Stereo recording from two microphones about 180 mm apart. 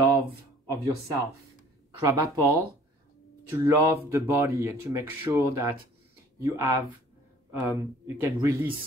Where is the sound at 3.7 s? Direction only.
15° right (ahead or behind).